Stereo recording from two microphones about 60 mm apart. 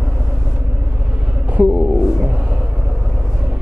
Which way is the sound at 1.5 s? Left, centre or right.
Centre.